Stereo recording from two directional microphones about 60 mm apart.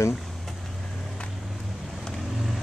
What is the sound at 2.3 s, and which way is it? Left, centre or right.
Vehicle, centre.